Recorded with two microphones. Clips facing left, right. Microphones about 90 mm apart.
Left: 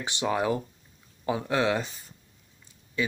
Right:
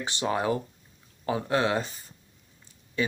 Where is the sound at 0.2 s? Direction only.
25° right (ahead or behind).